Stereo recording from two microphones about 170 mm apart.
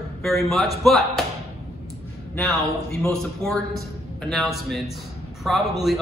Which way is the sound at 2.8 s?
5° left (ahead or behind).